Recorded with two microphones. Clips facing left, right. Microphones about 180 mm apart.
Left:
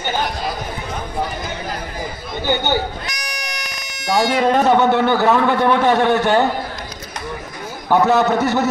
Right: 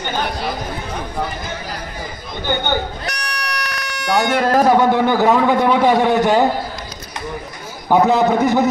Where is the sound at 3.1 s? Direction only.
65° right (ahead or behind).